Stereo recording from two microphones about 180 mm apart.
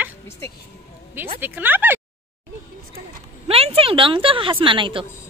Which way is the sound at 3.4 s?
35° right (ahead or behind).